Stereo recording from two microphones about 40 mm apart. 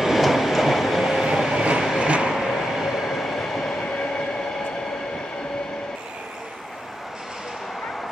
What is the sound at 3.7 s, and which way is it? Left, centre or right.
Train, left.